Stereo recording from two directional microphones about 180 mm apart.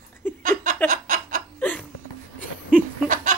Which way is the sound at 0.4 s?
45° right (ahead or behind).